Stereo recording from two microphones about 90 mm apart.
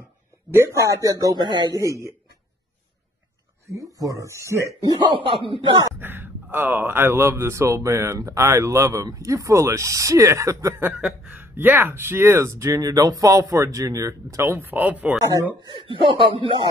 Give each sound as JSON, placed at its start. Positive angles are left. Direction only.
{"t": 0.5, "sound": "speech", "side_deg": -30}
{"t": 1.2, "sound": "speech", "side_deg": -55}
{"t": 1.8, "sound": "speech", "side_deg": -35}
{"t": 4.0, "sound": "speech", "side_deg": -35}
{"t": 5.1, "sound": "a man's voice", "side_deg": -75}
{"t": 5.9, "sound": "speech", "side_deg": -25}
{"t": 10.9, "sound": "speech", "side_deg": -15}
{"t": 15.6, "sound": "a man's voice", "side_deg": -65}